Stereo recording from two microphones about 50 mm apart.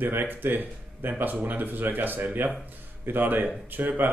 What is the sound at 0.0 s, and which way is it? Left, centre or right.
Speech, right.